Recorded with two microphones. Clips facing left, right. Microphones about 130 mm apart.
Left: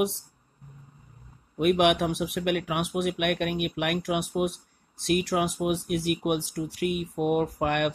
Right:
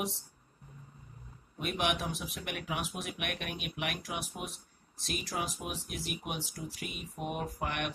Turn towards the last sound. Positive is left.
turn(degrees=65)  # may be behind; listen again after turning